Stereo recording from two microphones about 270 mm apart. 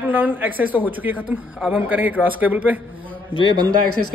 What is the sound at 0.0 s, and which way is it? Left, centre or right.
A man's voice, centre.